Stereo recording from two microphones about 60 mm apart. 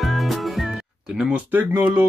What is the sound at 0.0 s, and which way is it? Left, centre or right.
Music, centre.